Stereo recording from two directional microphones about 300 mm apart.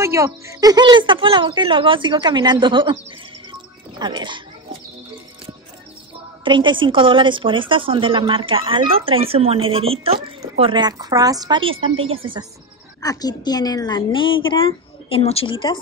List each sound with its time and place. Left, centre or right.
0.0 s a woman's voice: centre
4.0 s a woman's voice: centre
6.4 s a woman's voice: centre
13.0 s a woman's voice: centre